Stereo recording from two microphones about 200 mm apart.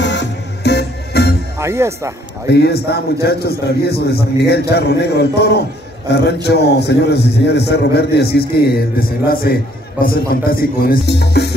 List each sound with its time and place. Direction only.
0.0 s music: 60° left (ahead or behind)
1.6 s speech: 15° right (ahead or behind)
2.5 s a man's voice: 55° left (ahead or behind)